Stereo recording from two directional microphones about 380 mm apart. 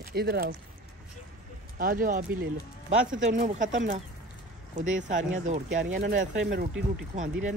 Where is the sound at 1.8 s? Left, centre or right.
Right.